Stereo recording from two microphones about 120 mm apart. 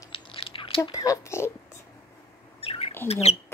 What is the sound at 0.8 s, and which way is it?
Speech, 30° left (ahead or behind).